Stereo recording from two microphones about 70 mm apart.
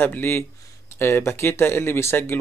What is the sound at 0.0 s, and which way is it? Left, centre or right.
Speech, left.